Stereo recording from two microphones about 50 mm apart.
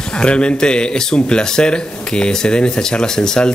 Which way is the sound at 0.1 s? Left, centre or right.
Centre.